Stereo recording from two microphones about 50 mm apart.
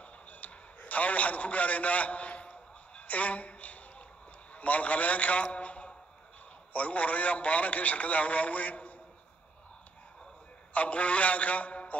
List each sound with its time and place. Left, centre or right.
0.0 s a sound: left
3.1 s a woman's voice: left
10.7 s a man's voice: left